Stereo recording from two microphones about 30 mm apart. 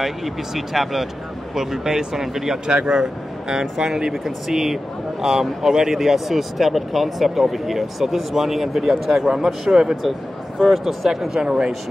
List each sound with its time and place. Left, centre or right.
0.0 s speech: centre
2.6 s speech: right
4.1 s speech: centre
10.7 s speech: centre
11.1 s speech: centre